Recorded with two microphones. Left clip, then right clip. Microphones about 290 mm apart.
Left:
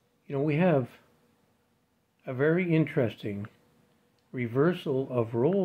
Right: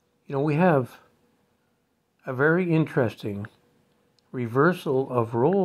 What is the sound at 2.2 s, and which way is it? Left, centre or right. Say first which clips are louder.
Speech: right 4 dB; centre.